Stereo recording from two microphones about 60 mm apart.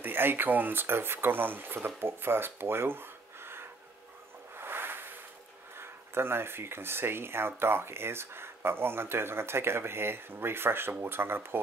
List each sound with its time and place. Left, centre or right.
0.0 s speech: right
4.6 s a sound: right
5.8 s speech: right